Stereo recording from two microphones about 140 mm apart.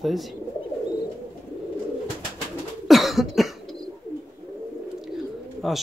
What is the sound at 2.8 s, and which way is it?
Cough, centre (ahead or behind).